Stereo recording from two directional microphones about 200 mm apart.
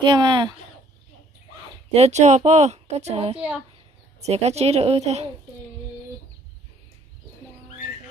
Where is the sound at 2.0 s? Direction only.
35° right (ahead or behind).